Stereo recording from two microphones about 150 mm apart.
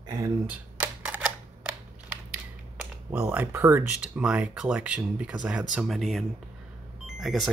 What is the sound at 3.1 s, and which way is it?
Speech, 10° right (ahead or behind).